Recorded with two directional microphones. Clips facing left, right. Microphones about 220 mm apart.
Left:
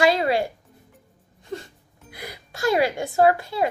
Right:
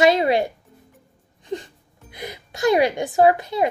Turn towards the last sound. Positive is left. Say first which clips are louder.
# right 2 dB
turn(degrees=-20)  # may be behind; listen again after turning